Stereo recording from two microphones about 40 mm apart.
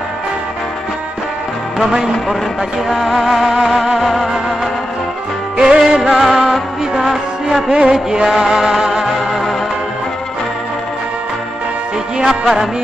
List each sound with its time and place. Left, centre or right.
2.9 s music: centre
5.6 s music: centre
7.7 s music: right
8.1 s music: centre
12.3 s music: centre